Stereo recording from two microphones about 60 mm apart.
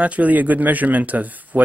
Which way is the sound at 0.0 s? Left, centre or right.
Right.